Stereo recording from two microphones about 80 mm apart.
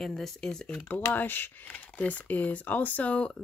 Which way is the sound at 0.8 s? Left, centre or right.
Left.